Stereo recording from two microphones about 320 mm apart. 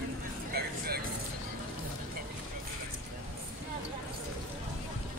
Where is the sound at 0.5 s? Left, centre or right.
Right.